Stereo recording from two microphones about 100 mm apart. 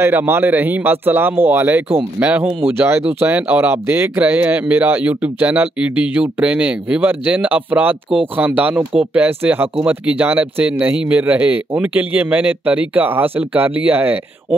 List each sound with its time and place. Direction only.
0.0 s speech: 20° right (ahead or behind)